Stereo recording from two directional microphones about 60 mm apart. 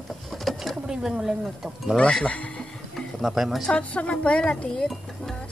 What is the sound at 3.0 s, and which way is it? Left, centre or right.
Speech, centre.